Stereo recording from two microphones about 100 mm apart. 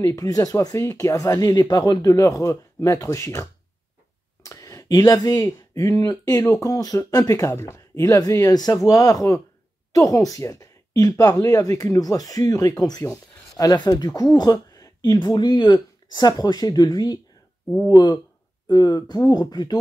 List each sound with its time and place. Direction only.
0.0 s speech: 35° left (ahead or behind)
4.5 s speech: 35° left (ahead or behind)
13.0 s a sound: 25° left (ahead or behind)
13.7 s speech: 45° left (ahead or behind)